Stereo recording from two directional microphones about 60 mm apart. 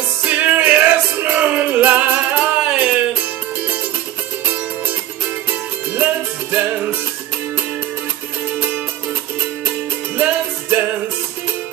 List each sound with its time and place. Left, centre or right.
0.2 s music: right
2.6 s music: centre
3.2 s music: right
4.8 s music: right
8.5 s music: right